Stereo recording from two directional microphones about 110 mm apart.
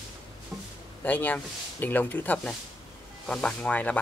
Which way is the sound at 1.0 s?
15° left (ahead or behind).